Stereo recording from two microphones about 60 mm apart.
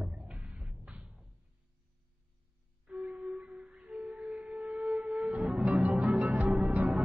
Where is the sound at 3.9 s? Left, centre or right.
Centre.